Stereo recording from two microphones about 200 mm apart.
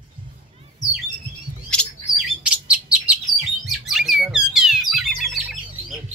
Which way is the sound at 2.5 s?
5° right (ahead or behind).